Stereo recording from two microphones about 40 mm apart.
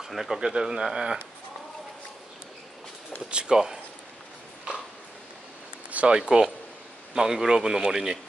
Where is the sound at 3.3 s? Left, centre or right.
Right.